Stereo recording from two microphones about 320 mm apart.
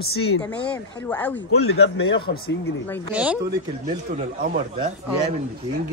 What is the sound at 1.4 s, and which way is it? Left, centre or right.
Speech, left.